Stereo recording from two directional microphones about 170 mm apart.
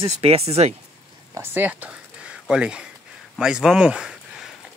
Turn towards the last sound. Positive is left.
turn(degrees=-5)  # may be behind; listen again after turning